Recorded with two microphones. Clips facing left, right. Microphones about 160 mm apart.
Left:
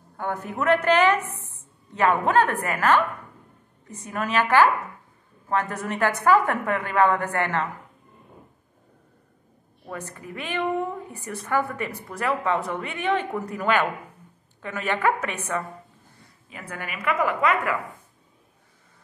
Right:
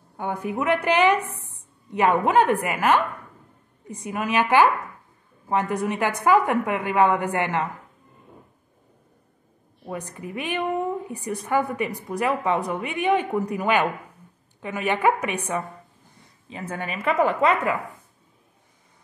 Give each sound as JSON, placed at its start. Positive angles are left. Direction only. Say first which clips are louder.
{"t": 0.2, "sound": "a woman's voice", "louder": "right 1 dB", "side_deg": -15}
{"t": 9.8, "sound": "a woman's voice", "louder": "right 3 dB", "side_deg": -15}
{"t": 16.4, "sound": "a woman's voice", "louder": "right 5 dB", "side_deg": -25}